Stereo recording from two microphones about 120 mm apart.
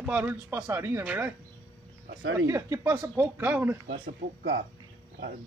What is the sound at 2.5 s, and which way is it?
Speech, 25° right (ahead or behind).